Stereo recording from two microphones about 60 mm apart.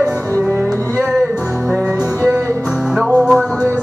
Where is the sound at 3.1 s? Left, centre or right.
Centre.